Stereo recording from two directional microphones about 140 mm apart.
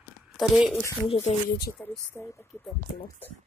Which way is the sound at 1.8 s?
10° left (ahead or behind).